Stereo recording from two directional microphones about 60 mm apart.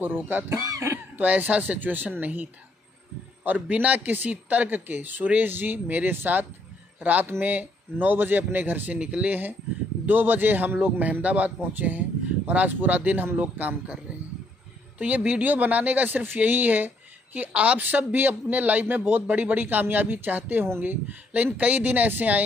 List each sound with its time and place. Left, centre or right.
0.0 s speech: right
0.6 s speech: right
1.1 s speech: right
3.4 s speech: right
8.9 s speech: centre
9.3 s speech: right
15.0 s speech: right